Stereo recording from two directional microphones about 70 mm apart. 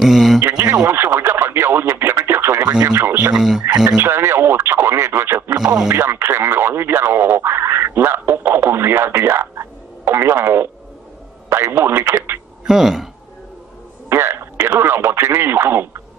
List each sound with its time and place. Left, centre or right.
0.0 s a sound: centre
0.4 s speech: right
0.8 s radio: right
2.9 s speech: right
3.3 s speech: centre
4.0 s speech: right
5.6 s speech: centre
5.9 s speech: right
12.6 s speech: centre
14.0 s speech: right